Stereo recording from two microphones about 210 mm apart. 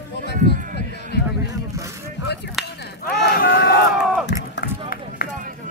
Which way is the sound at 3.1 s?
50° left (ahead or behind).